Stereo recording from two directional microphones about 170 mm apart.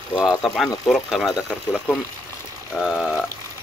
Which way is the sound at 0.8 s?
Centre (ahead or behind).